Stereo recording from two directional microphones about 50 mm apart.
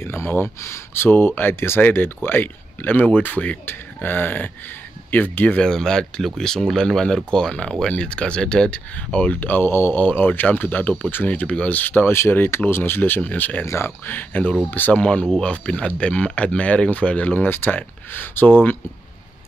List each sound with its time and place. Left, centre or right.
0.0 s speech: left
1.1 s speech: left
1.8 s speech: left
3.6 s speech: left
5.6 s speech: centre; by 9.7 s left
9.7 s speech: left
9.9 s speech: left
12.1 s speech: left
13.2 s speech: left
13.7 s speech: left
14.0 s speech: left
15.0 s speech: left
17.4 s speech: left